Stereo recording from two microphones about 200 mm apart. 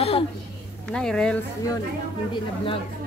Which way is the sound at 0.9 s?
5° left (ahead or behind).